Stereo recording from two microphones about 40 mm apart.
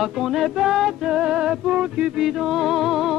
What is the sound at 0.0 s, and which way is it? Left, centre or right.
Music, centre.